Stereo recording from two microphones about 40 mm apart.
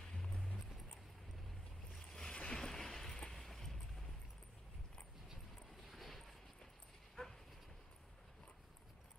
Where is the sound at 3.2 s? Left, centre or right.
Centre.